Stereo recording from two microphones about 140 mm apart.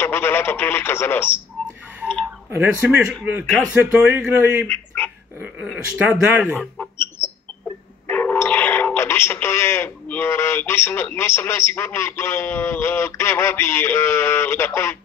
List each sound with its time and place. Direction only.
0.0 s speech: 15° left (ahead or behind)
2.5 s speech: 15° right (ahead or behind)
3.4 s speech: 10° left (ahead or behind)
3.7 s speech: 15° right (ahead or behind)
4.6 s a sound: 15° left (ahead or behind)
5.7 s speech: 5° right (ahead or behind)
8.1 s speech: 15° left (ahead or behind)